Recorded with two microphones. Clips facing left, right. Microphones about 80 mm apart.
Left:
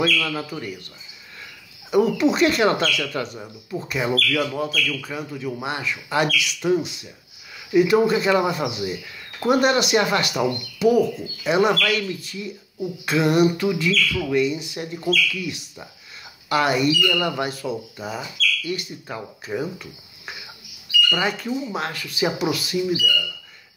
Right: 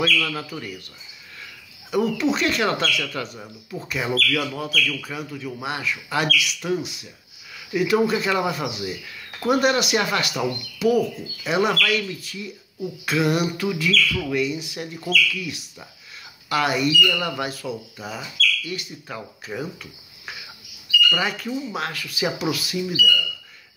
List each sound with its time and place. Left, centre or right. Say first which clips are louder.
0.0 s speech: left 1 dB; centre
1.9 s speech: left 3 dB; centre
5.3 s speech: left 3 dB; centre